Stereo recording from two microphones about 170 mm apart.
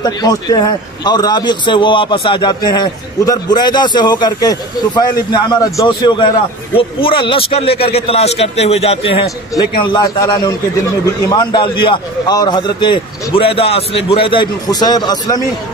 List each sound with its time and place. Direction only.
0.0 s a man's voice: 25° left (ahead or behind)
9.5 s a man's voice: 25° left (ahead or behind)